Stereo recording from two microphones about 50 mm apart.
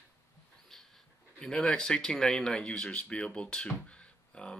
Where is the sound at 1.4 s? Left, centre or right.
Centre.